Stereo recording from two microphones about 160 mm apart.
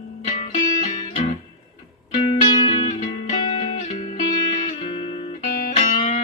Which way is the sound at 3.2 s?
40° left (ahead or behind).